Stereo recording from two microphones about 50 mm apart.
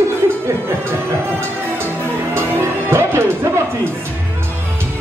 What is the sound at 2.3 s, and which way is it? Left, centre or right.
Music, right.